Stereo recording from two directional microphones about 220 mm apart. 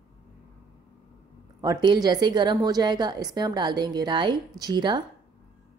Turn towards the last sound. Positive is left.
turn(degrees=-20)  # may be behind; listen again after turning